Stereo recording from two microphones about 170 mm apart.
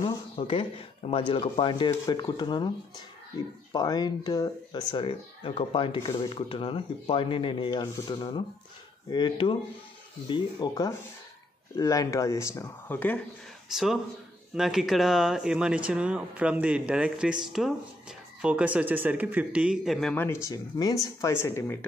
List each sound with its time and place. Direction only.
0.0 s speech: 30° left (ahead or behind)
3.7 s speech: 25° left (ahead or behind)
13.7 s speech: centre (ahead or behind)
20.4 s speech: 20° left (ahead or behind)